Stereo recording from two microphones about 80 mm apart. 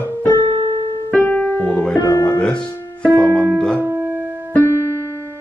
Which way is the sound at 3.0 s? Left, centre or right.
Right.